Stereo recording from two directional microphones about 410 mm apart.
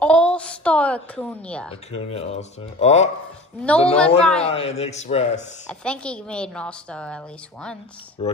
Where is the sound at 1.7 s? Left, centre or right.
Centre.